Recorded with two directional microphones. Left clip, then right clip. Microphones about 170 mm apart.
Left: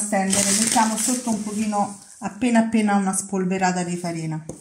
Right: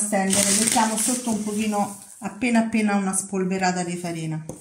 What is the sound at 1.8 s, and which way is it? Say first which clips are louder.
Speech: left 2 dB; 30° left (ahead or behind).